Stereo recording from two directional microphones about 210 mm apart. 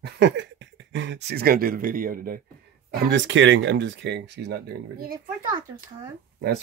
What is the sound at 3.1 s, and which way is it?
Speech, 60° right (ahead or behind).